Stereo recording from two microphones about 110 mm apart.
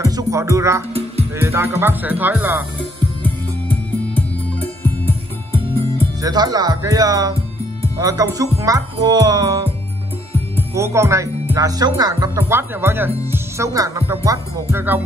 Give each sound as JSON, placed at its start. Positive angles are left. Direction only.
{"t": 0.0, "sound": "speech", "side_deg": -30}
{"t": 4.1, "sound": "music", "side_deg": 15}
{"t": 6.2, "sound": "speech", "side_deg": -35}
{"t": 10.7, "sound": "speech", "side_deg": -25}